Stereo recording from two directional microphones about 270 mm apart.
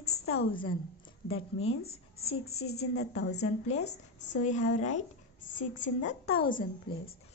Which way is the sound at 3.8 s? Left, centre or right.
Left.